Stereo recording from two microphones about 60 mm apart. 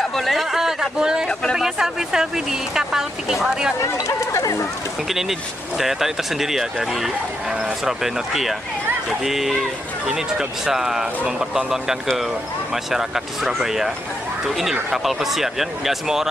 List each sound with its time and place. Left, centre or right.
0.0 s speech: centre
3.8 s speech: left
5.8 s speech: centre